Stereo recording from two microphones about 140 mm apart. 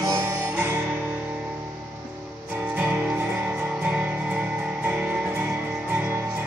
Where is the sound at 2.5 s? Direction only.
10° right (ahead or behind).